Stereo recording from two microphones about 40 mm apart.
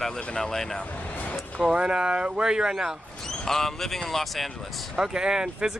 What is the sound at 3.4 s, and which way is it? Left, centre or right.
Speech, centre.